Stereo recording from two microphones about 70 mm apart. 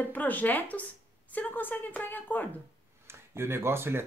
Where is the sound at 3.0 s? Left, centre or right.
Right.